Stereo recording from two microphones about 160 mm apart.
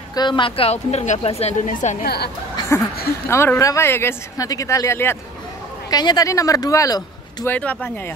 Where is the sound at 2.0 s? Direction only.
85° left.